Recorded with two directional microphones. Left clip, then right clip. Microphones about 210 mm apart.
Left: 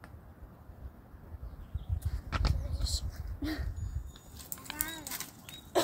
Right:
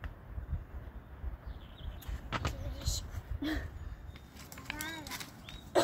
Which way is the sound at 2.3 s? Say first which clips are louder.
Even; centre (ahead or behind).